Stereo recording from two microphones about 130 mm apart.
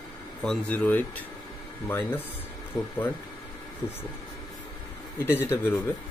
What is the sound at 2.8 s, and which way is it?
Speech, 35° left (ahead or behind).